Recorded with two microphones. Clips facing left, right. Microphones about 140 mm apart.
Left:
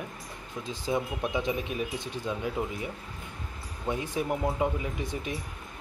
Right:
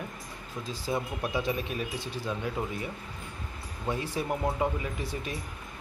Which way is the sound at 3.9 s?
15° left (ahead or behind).